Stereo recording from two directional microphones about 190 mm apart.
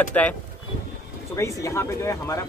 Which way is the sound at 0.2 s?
5° left (ahead or behind).